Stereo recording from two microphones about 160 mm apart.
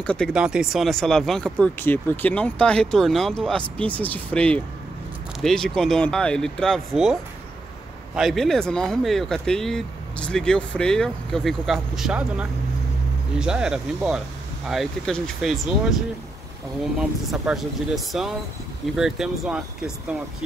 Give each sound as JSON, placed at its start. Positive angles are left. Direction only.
{"t": 0.0, "sound": "speech", "side_deg": 5}
{"t": 0.3, "sound": "speech", "side_deg": -5}
{"t": 8.2, "sound": "speech", "side_deg": 0}
{"t": 17.3, "sound": "speech", "side_deg": 0}